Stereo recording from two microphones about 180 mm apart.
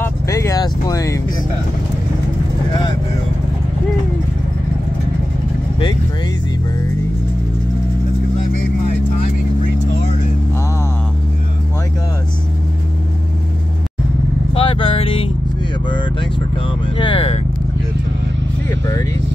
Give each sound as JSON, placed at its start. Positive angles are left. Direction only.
{"t": 0.0, "sound": "speech", "side_deg": 15}
{"t": 14.5, "sound": "vehicle", "side_deg": 30}
{"t": 15.9, "sound": "speech", "side_deg": 25}
{"t": 18.7, "sound": "speech", "side_deg": 15}